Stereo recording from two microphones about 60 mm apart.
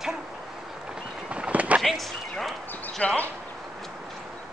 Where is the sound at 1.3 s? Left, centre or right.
Right.